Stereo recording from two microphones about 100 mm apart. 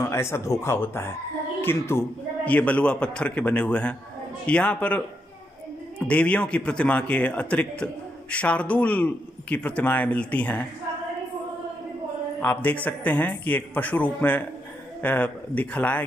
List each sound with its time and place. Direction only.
0.0 s a woman's voice: 25° left (ahead or behind)
2.4 s a man's voice: 15° left (ahead or behind)
6.0 s a man's voice: 15° left (ahead or behind)
12.4 s a man's voice: 15° left (ahead or behind)